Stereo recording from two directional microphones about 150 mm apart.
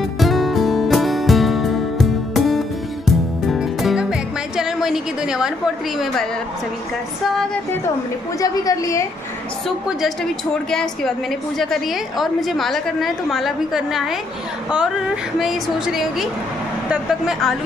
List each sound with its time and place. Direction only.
0.2 s music: centre (ahead or behind)
8.4 s a woman's voice: 20° left (ahead or behind)
9.7 s a woman's voice: centre (ahead or behind)
11.5 s a woman's voice: centre (ahead or behind)